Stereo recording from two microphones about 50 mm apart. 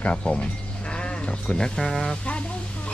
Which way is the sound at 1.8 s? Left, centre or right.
Centre.